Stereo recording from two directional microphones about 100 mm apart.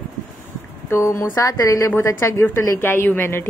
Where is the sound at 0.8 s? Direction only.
25° left (ahead or behind).